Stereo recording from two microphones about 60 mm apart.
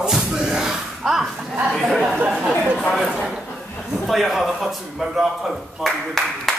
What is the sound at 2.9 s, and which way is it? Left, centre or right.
Speech, centre.